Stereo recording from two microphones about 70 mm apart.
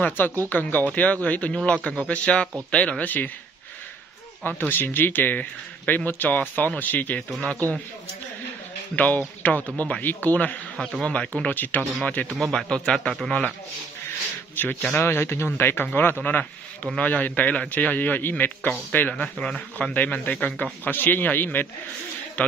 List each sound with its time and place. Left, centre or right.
0.5 s a man's voice: left
4.5 s a man's voice: left
8.9 s a man's voice: left
11.0 s a man's voice: centre
12.4 s speech: centre
14.6 s a man's voice: left; by 19.9 s centre
19.9 s a man's voice: left